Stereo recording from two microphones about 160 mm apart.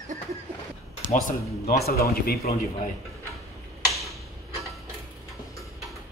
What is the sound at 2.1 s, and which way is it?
Speech, 70° left (ahead or behind).